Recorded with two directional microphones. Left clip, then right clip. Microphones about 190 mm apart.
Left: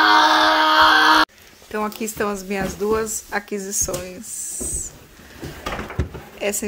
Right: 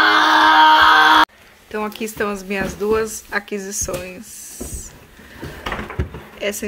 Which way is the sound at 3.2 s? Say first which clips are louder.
Right 2 dB; 5° left (ahead or behind).